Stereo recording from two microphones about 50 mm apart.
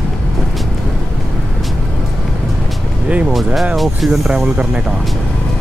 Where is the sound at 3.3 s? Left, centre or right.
Centre.